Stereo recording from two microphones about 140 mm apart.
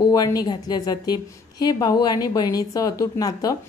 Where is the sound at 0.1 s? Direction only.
25° left (ahead or behind).